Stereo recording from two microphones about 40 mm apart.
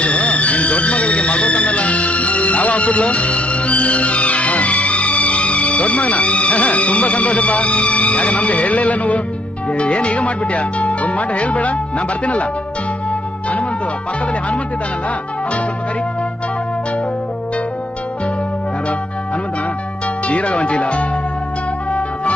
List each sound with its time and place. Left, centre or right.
0.0 s music: left
9.7 s speech: left
20.2 s speech: left